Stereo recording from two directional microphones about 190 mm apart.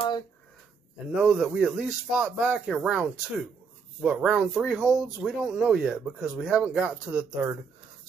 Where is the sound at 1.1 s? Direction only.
5° right (ahead or behind).